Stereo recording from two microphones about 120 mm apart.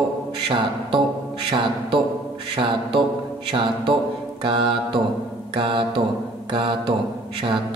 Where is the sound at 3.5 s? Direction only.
45° right (ahead or behind).